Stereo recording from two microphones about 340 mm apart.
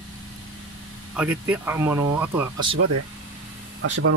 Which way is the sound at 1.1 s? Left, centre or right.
Centre.